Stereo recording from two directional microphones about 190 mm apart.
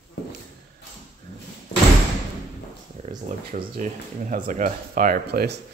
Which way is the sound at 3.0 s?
40° right (ahead or behind).